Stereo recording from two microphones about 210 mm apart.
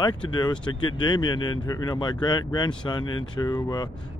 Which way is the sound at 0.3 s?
20° left (ahead or behind).